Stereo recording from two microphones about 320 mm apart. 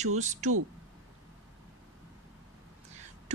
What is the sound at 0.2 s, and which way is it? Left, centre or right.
Speech, right.